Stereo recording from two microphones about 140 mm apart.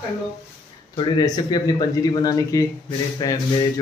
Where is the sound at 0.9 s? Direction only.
30° left (ahead or behind).